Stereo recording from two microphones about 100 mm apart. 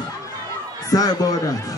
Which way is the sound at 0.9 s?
40° left (ahead or behind).